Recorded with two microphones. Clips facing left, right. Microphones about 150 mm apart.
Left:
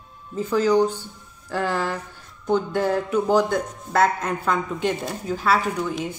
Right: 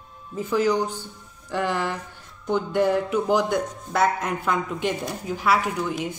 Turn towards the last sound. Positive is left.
turn(degrees=-15)  # may be behind; listen again after turning